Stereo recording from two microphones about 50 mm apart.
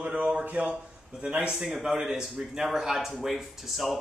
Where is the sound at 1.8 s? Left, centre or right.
Centre.